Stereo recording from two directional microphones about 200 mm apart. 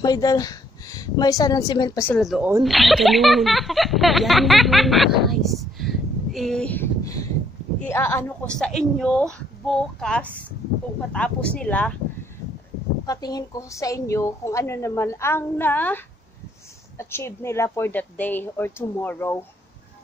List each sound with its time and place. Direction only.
0.0 s a woman's voice: 20° left (ahead or behind)
13.0 s a woman's voice: 20° left (ahead or behind)
17.0 s a woman's voice: 10° left (ahead or behind)